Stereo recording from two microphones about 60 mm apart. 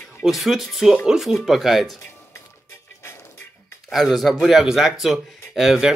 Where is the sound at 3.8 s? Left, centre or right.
Centre.